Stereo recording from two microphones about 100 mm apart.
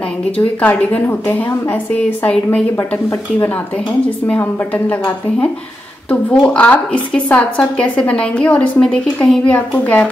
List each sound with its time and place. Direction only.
0.6 s a woman's voice: 15° left (ahead or behind)
4.4 s a woman's voice: 20° left (ahead or behind)